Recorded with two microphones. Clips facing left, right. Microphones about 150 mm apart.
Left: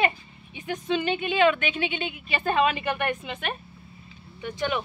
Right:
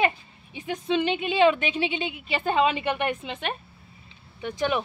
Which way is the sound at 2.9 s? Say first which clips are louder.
Right 1 dB; centre (ahead or behind).